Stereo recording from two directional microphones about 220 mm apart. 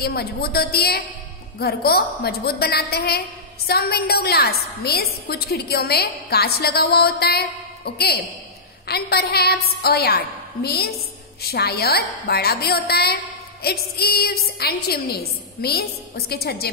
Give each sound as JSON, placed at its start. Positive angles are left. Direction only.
{"t": 0.0, "sound": "a woman's voice", "side_deg": 45}